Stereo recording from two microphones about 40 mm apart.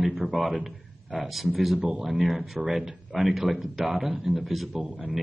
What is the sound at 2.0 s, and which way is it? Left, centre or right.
A man's voice, centre.